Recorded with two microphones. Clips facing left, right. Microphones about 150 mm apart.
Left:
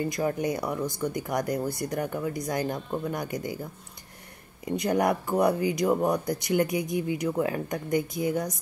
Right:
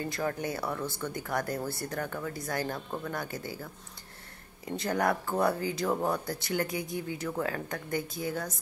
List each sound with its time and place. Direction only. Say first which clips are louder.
0.1 s speech: left 5 dB; 15° left (ahead or behind)
4.6 s speech: left 4 dB; 15° left (ahead or behind)